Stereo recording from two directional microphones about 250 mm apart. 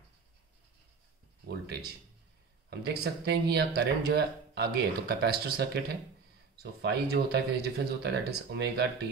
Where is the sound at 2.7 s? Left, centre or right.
Right.